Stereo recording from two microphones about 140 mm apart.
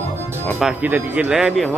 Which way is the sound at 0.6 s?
10° right (ahead or behind).